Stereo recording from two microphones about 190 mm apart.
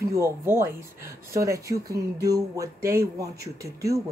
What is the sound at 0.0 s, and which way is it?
Speech, 15° right (ahead or behind).